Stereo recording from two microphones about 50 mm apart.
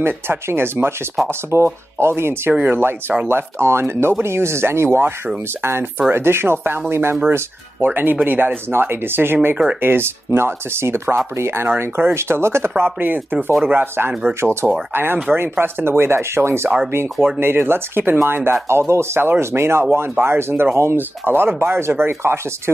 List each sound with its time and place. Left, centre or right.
0.0 s speech: right
1.2 s speech: right
2.7 s speech: right
7.8 s speech: right
17.4 s speech: right
18.7 s speech: right